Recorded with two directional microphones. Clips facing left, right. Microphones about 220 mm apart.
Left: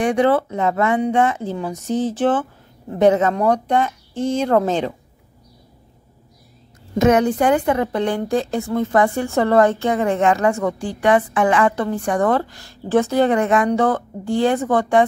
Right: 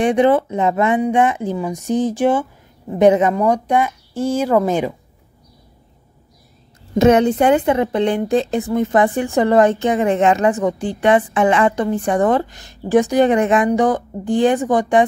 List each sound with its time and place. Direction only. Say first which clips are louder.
0.0 s a woman's voice: right 2 dB; 20° right (ahead or behind)
7.0 s a woman's voice: right 3 dB; 25° right (ahead or behind)